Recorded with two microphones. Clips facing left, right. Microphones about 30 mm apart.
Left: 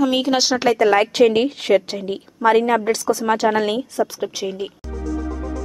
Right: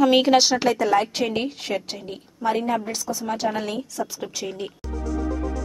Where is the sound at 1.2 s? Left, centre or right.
Left.